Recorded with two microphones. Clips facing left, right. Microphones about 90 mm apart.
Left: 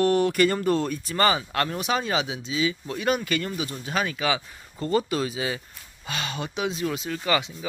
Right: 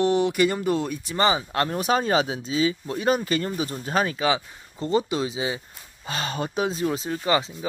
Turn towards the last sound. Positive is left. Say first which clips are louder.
# right 2 dB
turn(degrees=-25)  # may be behind; listen again after turning